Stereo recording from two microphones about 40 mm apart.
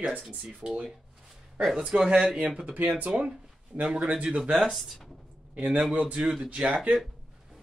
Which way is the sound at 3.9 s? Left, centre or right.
Right.